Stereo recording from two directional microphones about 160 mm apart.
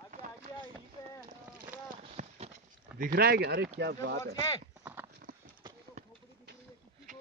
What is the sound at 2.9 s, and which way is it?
Speech, 65° right (ahead or behind).